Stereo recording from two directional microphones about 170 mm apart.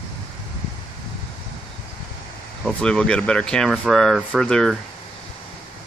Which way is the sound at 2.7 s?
5° left (ahead or behind).